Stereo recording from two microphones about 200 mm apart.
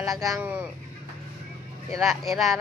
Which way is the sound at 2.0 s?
Centre (ahead or behind).